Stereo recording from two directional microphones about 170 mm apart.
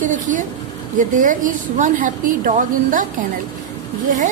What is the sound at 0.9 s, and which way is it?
A woman's voice, 50° right (ahead or behind).